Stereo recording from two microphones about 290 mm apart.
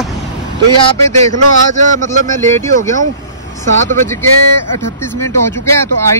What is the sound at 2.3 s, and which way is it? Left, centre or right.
Speech, centre.